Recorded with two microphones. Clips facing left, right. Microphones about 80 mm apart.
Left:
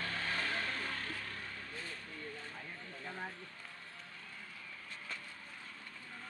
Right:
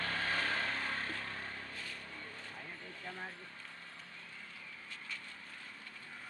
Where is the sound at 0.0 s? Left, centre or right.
Right.